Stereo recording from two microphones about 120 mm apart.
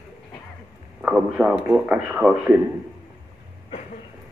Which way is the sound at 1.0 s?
10° right (ahead or behind).